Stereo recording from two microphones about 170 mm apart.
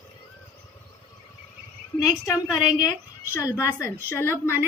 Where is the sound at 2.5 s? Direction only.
5° right (ahead or behind).